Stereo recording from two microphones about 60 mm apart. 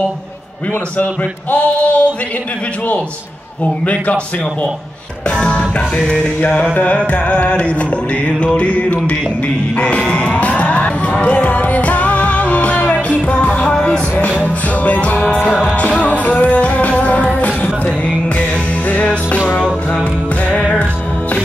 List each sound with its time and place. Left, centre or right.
1.5 s music: left
3.8 s music: left
5.3 s music: centre